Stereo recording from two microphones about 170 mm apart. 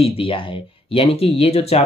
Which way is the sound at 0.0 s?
35° left (ahead or behind).